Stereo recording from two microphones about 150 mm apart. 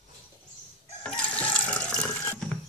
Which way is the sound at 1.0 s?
10° left (ahead or behind).